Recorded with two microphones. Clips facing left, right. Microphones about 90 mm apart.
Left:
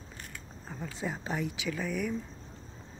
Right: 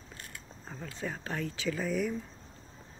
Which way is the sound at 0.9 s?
15° left (ahead or behind).